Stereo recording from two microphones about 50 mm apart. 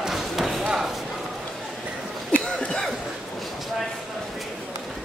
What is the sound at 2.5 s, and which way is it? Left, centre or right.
Cough, centre.